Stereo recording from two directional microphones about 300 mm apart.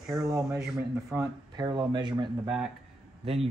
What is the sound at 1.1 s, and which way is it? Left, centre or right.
Speech, centre.